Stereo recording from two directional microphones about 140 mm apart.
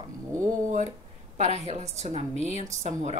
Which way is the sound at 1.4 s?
50° right (ahead or behind).